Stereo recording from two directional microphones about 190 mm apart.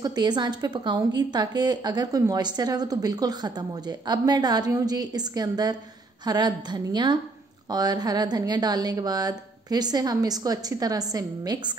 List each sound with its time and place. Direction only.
0.0 s speech: 20° right (ahead or behind)